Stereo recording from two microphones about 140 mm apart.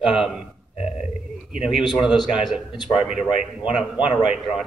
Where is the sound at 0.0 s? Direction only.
5° right (ahead or behind).